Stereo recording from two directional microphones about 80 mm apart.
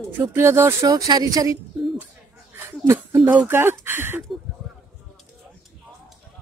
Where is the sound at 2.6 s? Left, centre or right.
Right.